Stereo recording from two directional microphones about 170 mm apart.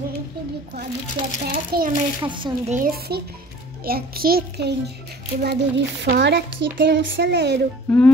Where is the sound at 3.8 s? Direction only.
60° right (ahead or behind); by 7.6 s 80° right.